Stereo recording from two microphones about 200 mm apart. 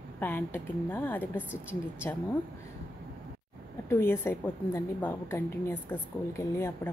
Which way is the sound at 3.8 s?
10° left (ahead or behind).